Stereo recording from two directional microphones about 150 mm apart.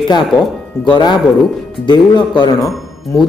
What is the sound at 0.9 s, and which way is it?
A man's voice, 30° left (ahead or behind).